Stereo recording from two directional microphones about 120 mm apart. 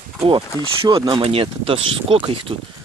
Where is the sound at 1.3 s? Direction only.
50° right (ahead or behind).